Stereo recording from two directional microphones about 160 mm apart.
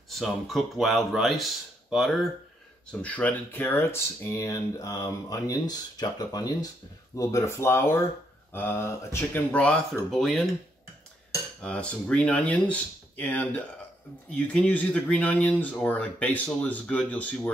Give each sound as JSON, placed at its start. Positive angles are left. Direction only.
{"t": 0.1, "sound": "speech", "side_deg": 0}
{"t": 11.6, "sound": "speech", "side_deg": 5}